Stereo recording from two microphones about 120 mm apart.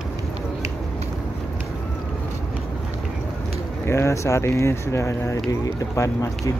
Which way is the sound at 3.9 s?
20° left (ahead or behind).